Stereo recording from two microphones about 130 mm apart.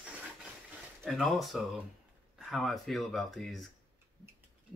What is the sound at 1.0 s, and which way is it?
Speech, centre (ahead or behind).